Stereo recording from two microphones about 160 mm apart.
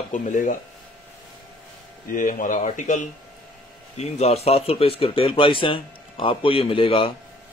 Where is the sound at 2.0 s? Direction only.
55° left (ahead or behind).